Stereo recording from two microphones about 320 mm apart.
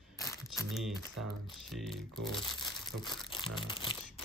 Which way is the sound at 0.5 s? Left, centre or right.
Centre.